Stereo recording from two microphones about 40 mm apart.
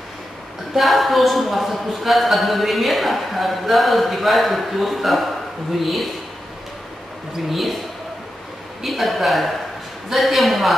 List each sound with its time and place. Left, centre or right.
0.7 s a man's voice: centre
7.3 s a man's voice: centre
8.8 s a man's voice: centre